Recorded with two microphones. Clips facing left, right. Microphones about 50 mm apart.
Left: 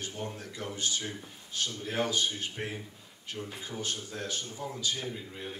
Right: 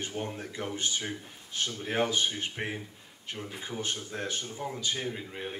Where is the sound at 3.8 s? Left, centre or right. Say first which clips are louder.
Right 2 dB; right.